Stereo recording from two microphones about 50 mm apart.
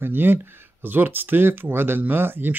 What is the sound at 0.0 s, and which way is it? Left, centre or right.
Speech, right.